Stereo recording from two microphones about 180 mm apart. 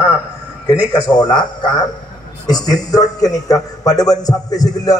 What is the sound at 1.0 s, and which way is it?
A man's voice, 25° left (ahead or behind).